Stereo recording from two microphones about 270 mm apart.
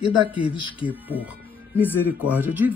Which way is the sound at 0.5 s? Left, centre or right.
Centre.